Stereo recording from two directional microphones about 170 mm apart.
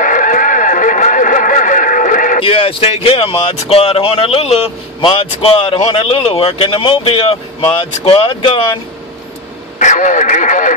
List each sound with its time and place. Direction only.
0.0 s a sound: 50° left (ahead or behind)
2.4 s speech: 30° left (ahead or behind)
9.8 s speech: 50° left (ahead or behind)